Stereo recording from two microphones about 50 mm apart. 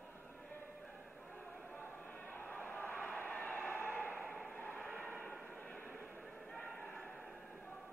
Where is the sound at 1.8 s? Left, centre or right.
Left.